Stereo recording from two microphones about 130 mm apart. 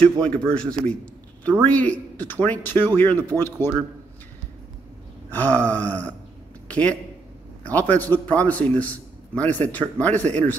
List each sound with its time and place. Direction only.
0.0 s a man's voice: 5° left (ahead or behind)
5.3 s a man's voice: 15° left (ahead or behind)